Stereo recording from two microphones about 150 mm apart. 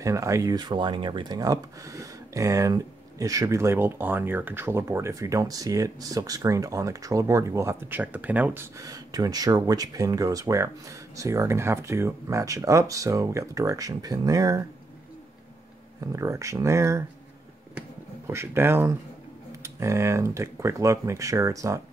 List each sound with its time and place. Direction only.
0.0 s speech: 20° right (ahead or behind)
16.0 s speech: 20° right (ahead or behind)